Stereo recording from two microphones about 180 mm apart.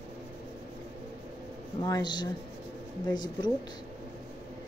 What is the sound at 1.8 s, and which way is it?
Speech, 25° left (ahead or behind).